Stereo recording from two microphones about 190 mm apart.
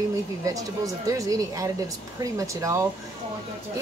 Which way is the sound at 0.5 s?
15° right (ahead or behind).